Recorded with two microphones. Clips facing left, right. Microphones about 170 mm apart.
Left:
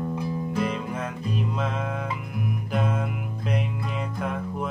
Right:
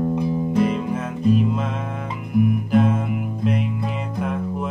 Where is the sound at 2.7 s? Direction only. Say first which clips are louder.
Right 7 dB; 5° right (ahead or behind).